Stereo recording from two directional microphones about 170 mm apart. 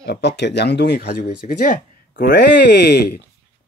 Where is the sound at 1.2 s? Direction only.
55° left (ahead or behind); by 3.2 s 70° left (ahead or behind).